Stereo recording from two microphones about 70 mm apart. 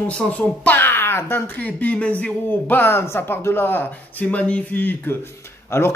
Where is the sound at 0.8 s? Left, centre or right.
Left.